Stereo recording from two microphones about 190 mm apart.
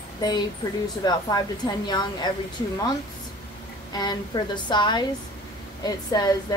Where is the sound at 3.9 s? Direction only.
20° left (ahead or behind).